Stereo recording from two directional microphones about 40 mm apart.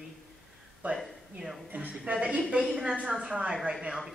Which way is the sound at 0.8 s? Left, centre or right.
Right.